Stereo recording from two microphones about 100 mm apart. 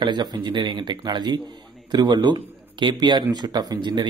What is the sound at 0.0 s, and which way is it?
A man's voice, 50° right (ahead or behind).